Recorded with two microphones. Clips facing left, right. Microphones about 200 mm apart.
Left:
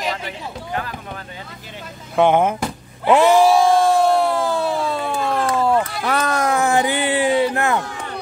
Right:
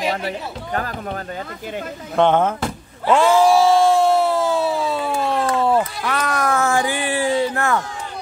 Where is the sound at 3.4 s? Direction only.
Centre (ahead or behind).